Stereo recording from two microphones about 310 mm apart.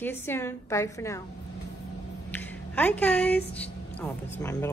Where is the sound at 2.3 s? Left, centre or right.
Centre.